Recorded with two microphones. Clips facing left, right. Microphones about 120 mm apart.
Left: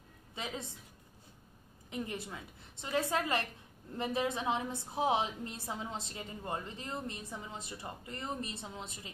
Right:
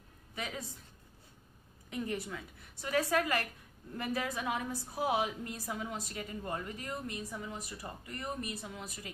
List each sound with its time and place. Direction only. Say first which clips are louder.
0.3 s a woman's voice: even; 20° left (ahead or behind)
1.9 s a woman's voice: right 2 dB; 20° left (ahead or behind)